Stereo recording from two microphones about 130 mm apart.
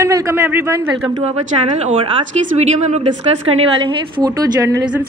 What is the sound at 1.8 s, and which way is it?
Speech, 45° right (ahead or behind).